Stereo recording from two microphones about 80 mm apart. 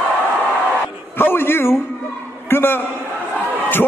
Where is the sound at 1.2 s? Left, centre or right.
Left.